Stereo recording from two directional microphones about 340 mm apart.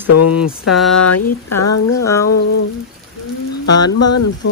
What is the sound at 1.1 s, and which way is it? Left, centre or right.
Speech, left.